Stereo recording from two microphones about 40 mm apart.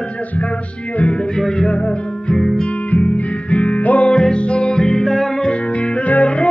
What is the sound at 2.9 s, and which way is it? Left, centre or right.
Music, left.